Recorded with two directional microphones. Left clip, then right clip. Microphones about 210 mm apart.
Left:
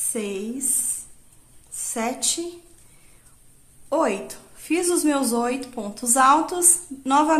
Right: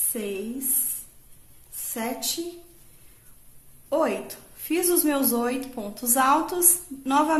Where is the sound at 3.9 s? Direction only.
20° left (ahead or behind).